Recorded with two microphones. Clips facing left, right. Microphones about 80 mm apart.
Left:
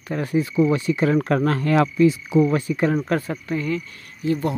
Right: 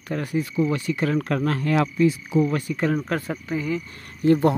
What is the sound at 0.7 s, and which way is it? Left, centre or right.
Speech, left.